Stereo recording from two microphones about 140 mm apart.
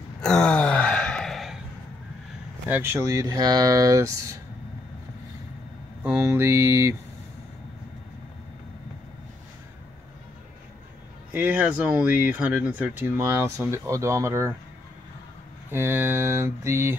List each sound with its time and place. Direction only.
0.2 s gasp: 5° left (ahead or behind)
2.7 s speech: 15° right (ahead or behind)
6.1 s speech: 20° right (ahead or behind)
11.3 s speech: 15° right (ahead or behind)
15.7 s speech: 15° right (ahead or behind)